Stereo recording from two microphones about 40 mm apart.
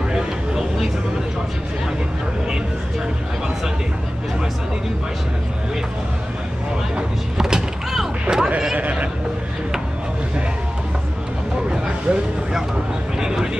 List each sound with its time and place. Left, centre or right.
7.0 s vehicle: centre
12.1 s vehicle: right
13.2 s vehicle: centre